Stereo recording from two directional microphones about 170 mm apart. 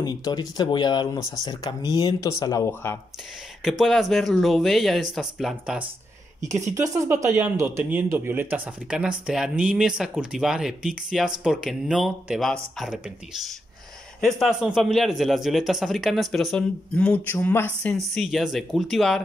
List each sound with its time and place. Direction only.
0.0 s speech: 25° left (ahead or behind)
3.6 s a man's voice: centre (ahead or behind)
6.5 s a man's voice: 20° right (ahead or behind); by 19.2 s centre (ahead or behind)